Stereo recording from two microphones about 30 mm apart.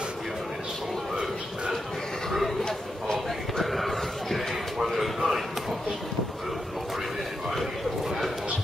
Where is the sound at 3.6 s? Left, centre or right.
Centre.